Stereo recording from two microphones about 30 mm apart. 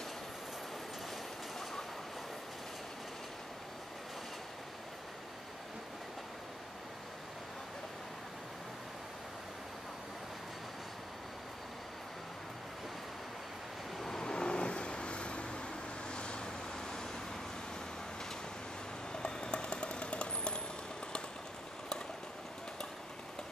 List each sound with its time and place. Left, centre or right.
13.9 s vehicle: centre
14.2 s vehicle: left
19.1 s a sound: left